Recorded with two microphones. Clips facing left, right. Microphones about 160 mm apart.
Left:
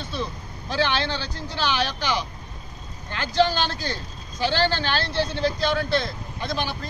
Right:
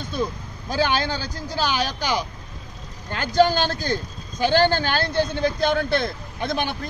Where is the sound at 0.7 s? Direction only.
45° right (ahead or behind).